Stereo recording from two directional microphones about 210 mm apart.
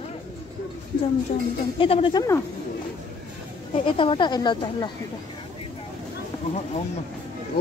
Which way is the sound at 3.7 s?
25° left (ahead or behind).